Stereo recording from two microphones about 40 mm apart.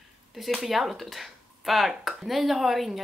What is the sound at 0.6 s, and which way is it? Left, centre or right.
Speech, centre.